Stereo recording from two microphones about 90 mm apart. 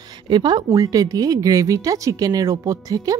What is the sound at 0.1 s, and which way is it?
Speech, 55° right (ahead or behind).